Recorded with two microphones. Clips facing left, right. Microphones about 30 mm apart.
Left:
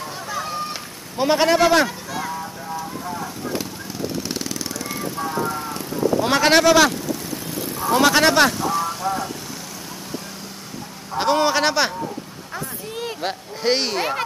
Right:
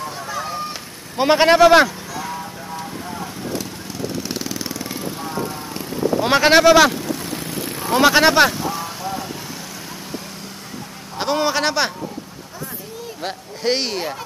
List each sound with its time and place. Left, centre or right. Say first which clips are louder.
0.0 s a sound: right 1 dB; centre
1.1 s a man's voice: right 3 dB; right
4.3 s jackhammer: right 1 dB; centre
5.2 s vehicle: left 6 dB; centre
5.8 s a sound: right 1 dB; centre
7.5 s a sound: left 1 dB; right
7.9 s speech: right 2 dB; centre
11.1 s speech: left 2 dB; centre
13.2 s speech: right 1 dB; centre